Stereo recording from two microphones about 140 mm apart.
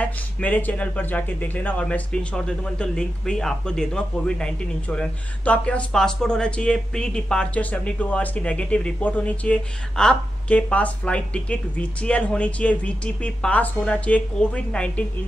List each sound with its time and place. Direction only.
0.0 s speech: 10° left (ahead or behind)